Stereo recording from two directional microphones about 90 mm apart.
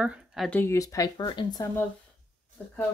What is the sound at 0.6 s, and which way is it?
Speech, 35° left (ahead or behind).